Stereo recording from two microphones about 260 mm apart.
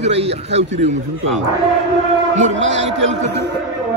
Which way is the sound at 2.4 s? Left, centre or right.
Right.